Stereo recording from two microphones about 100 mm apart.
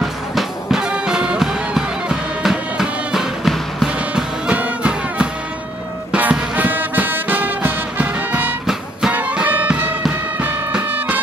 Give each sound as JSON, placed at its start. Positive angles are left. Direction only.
{"t": 0.0, "sound": "music", "side_deg": 0}